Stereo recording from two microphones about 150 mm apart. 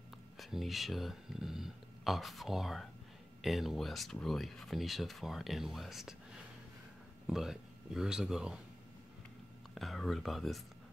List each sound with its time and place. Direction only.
0.4 s speech: centre (ahead or behind)
7.2 s speech: 5° right (ahead or behind)
9.8 s speech: centre (ahead or behind)